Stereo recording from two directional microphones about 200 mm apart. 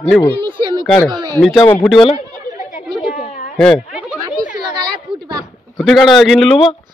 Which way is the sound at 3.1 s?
40° left (ahead or behind).